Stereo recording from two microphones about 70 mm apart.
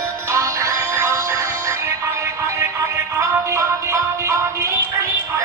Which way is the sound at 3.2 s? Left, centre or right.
Right.